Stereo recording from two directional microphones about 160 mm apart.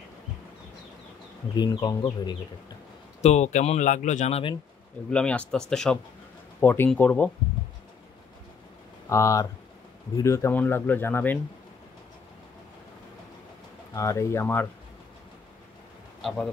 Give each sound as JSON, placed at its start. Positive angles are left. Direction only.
{"t": 1.6, "sound": "speech", "side_deg": 25}
{"t": 3.2, "sound": "speech", "side_deg": 45}
{"t": 5.1, "sound": "speech", "side_deg": 5}
{"t": 9.1, "sound": "speech", "side_deg": 20}
{"t": 13.9, "sound": "speech", "side_deg": 20}
{"t": 16.2, "sound": "speech", "side_deg": 0}